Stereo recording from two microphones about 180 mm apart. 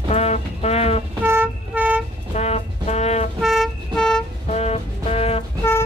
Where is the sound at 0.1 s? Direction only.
35° left (ahead or behind).